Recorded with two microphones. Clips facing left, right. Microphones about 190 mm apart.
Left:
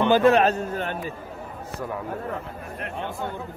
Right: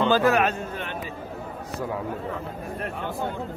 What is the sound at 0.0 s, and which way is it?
Speech, 20° left (ahead or behind).